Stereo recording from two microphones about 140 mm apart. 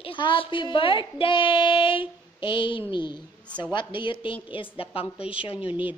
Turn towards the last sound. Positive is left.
turn(degrees=40)  # may be behind; listen again after turning